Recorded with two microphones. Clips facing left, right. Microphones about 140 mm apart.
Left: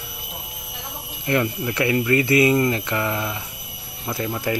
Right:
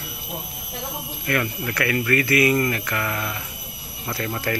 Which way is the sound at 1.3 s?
20° left (ahead or behind).